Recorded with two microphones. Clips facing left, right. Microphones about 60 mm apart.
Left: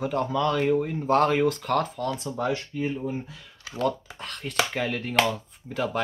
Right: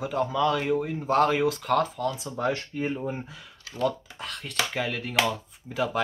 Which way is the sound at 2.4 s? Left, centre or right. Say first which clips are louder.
Right 1 dB; right.